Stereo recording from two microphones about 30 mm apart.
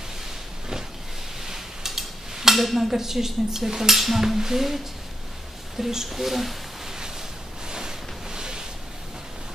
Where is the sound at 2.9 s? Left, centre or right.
Centre.